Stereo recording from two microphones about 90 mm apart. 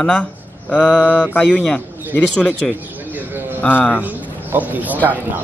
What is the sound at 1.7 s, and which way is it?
Speech, 15° left (ahead or behind).